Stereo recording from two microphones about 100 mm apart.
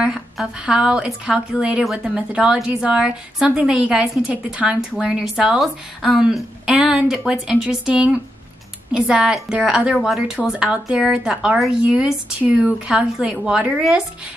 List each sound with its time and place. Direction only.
0.0 s a woman's voice: 10° right (ahead or behind)